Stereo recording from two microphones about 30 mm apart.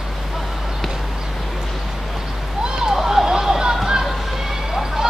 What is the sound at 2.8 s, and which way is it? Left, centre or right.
Vehicle, centre.